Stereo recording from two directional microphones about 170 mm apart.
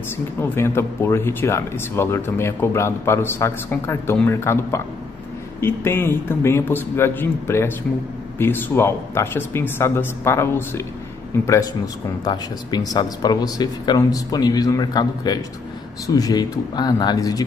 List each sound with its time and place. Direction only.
0.4 s speech: 15° left (ahead or behind)
12.3 s speech: 25° left (ahead or behind)